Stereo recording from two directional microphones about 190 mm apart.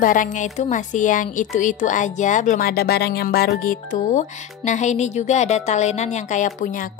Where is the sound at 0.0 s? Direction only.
45° left (ahead or behind).